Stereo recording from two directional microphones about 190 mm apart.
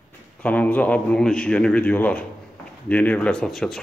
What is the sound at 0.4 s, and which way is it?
A man's voice, 10° left (ahead or behind).